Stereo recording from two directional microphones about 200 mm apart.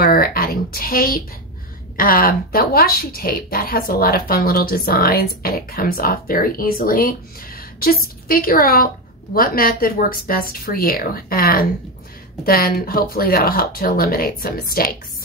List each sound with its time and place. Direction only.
0.0 s a woman's voice: 45° left (ahead or behind)